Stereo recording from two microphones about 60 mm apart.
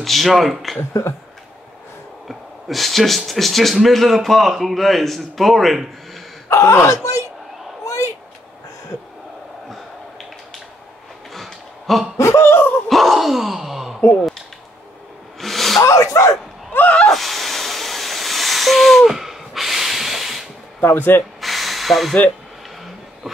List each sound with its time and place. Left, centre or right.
0.0 s speech: centre
0.7 s speech: left
2.2 s speech: centre
6.5 s speech: left
7.8 s a sound: left
11.3 s a sound: centre
12.2 s speech: left
12.8 s gasp: centre
15.4 s a sound: centre
15.8 s speech: left
17.1 s a sound: centre
20.8 s speech: left
21.4 s hiss: centre